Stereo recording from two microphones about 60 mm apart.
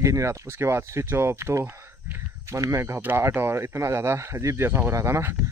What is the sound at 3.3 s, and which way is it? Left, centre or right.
Speech, right.